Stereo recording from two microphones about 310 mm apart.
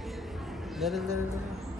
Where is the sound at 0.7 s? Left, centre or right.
Centre.